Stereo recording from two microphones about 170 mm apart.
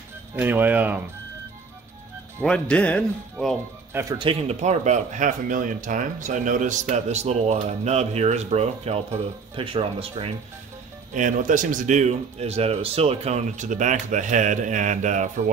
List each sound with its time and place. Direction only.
0.4 s speech: 10° right (ahead or behind)
2.4 s speech: 5° left (ahead or behind)
4.2 s speech: 35° right (ahead or behind)
11.1 s speech: 50° right (ahead or behind)